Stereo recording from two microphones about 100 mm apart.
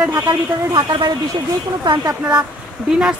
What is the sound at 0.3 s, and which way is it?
Speech, 50° right (ahead or behind).